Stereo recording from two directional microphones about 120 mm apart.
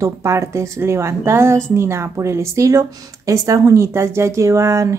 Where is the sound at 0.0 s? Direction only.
25° right (ahead or behind).